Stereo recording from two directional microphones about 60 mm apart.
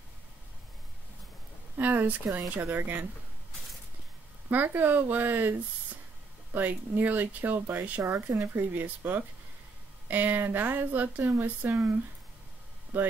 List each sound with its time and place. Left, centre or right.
1.8 s speech: right
4.5 s speech: right
8.0 s speech: right
8.5 s speech: right
12.9 s speech: right